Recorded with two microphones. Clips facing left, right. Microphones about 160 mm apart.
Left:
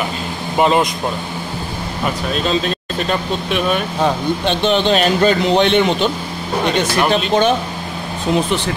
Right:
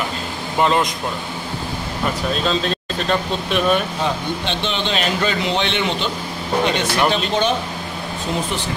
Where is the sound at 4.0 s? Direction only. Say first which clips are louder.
Left 5 dB; 50° left (ahead or behind).